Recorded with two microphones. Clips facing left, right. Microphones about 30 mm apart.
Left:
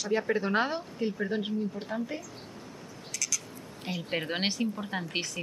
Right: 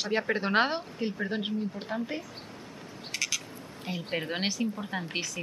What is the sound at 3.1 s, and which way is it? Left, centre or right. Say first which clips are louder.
Frog: right 3 dB; right.